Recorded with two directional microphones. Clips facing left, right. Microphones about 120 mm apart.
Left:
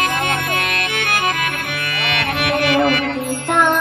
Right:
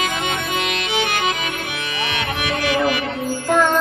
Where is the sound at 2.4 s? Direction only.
60° left (ahead or behind).